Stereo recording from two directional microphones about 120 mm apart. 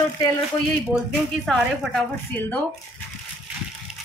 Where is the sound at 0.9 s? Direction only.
Centre (ahead or behind).